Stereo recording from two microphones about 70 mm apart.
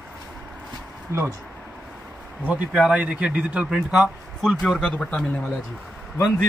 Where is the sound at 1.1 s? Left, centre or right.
Right.